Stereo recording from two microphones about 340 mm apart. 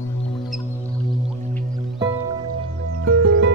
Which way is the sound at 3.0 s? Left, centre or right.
Right.